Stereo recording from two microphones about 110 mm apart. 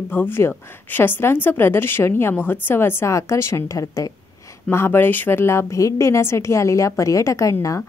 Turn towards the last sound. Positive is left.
turn(degrees=30)  # may be behind; listen again after turning